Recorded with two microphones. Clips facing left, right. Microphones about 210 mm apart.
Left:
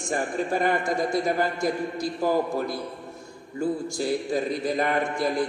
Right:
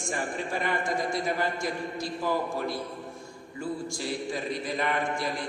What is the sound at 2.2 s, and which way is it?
Speech, 40° left (ahead or behind).